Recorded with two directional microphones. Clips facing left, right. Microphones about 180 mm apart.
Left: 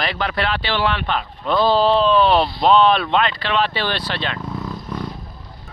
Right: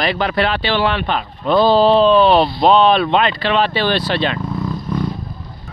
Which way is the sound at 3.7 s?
15° right (ahead or behind).